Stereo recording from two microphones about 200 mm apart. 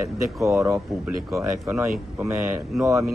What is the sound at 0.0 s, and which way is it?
Speech, 15° right (ahead or behind).